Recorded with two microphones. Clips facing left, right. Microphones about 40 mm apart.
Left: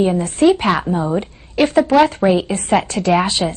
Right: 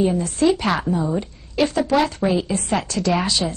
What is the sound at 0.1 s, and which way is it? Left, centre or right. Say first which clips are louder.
A woman's voice: left 5 dB; left.